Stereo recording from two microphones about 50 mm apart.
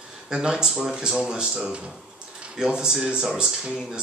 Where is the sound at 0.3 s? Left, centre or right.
Centre.